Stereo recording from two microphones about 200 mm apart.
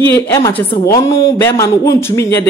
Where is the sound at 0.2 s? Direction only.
15° left (ahead or behind).